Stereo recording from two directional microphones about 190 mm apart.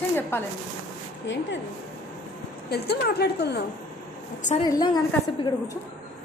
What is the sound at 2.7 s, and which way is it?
Speech, 55° left (ahead or behind).